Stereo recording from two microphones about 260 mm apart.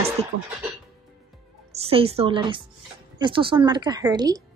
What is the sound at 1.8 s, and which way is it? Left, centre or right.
A woman's voice, right.